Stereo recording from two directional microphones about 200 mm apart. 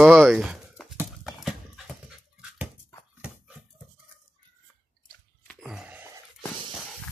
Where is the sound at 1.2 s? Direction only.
Centre (ahead or behind).